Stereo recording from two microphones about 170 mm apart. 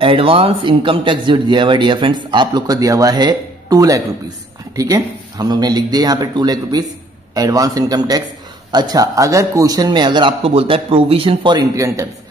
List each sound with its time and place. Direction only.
0.0 s speech: 30° right (ahead or behind)